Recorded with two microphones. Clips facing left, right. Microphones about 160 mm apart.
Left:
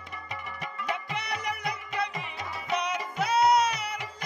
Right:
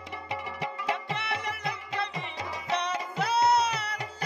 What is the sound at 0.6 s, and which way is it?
Music, 25° right (ahead or behind).